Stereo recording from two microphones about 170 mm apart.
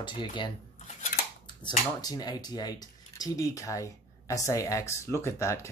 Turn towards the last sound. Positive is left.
turn(degrees=15)  # may be behind; listen again after turning